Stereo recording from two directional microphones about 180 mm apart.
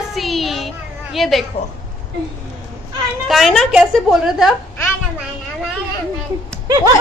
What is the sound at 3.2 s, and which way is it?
A woman's voice, centre (ahead or behind).